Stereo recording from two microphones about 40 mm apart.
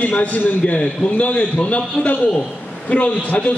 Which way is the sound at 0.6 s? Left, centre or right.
Left.